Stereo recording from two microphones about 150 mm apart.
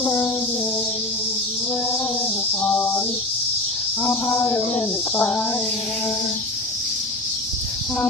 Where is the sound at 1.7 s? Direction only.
15° left (ahead or behind).